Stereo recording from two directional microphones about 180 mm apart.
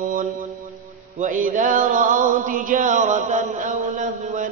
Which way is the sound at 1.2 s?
45° right (ahead or behind).